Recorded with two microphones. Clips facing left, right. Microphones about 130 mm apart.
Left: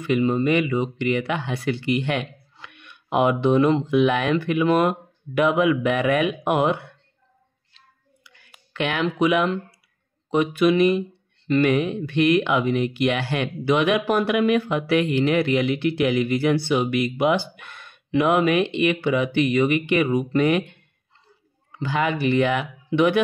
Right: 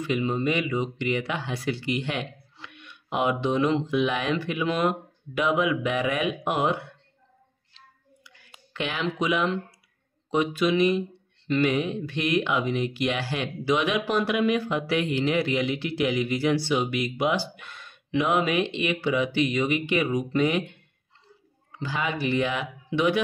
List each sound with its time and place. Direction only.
0.0 s speech: 50° left (ahead or behind)
8.7 s speech: 60° left (ahead or behind)
21.7 s speech: 60° left (ahead or behind)